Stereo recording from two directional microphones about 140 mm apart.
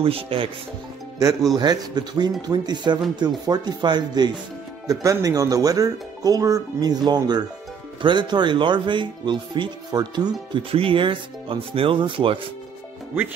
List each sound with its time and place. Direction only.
0.0 s speech: 40° right (ahead or behind)
1.6 s speech: 30° right (ahead or behind)